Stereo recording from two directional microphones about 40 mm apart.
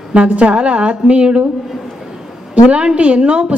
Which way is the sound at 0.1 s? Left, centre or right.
Right.